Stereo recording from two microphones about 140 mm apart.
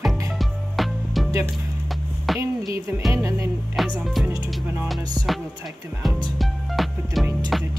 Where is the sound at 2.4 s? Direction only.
20° right (ahead or behind).